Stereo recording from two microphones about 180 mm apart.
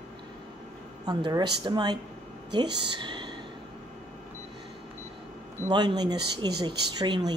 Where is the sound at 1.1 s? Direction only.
25° right (ahead or behind).